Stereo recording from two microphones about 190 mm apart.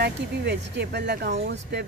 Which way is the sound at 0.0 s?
60° right (ahead or behind).